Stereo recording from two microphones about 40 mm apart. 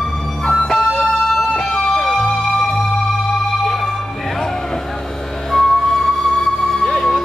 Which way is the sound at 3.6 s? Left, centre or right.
Centre.